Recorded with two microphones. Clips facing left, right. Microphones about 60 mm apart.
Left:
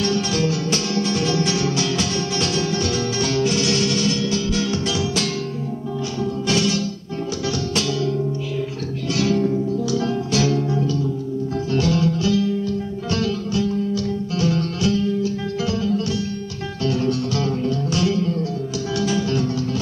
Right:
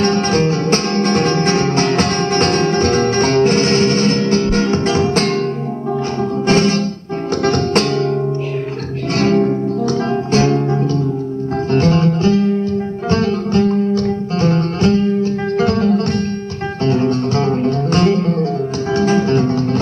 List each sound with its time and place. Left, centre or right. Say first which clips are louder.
0.0 s music: right 6 dB; right
6.4 s music: right 7 dB; right
9.1 s music: right 5 dB; right
16.8 s music: right 6 dB; right